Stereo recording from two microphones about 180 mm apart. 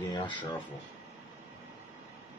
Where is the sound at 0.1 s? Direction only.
25° left (ahead or behind).